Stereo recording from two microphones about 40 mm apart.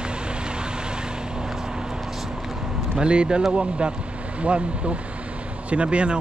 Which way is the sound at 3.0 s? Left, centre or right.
Right.